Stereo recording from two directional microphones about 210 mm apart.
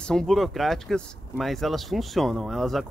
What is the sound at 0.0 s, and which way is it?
Speech, centre (ahead or behind).